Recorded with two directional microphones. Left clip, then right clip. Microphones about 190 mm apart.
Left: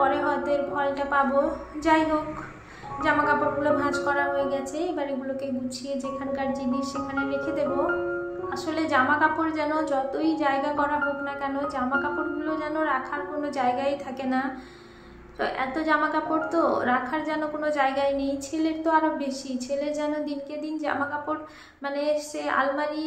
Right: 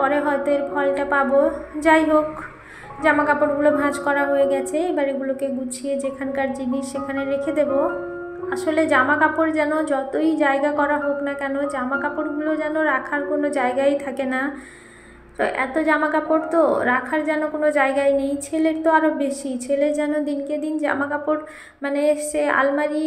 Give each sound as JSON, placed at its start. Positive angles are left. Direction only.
{"t": 0.0, "sound": "a woman's voice", "side_deg": -25}